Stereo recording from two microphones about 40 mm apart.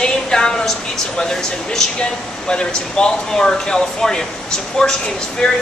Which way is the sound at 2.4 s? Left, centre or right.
Left.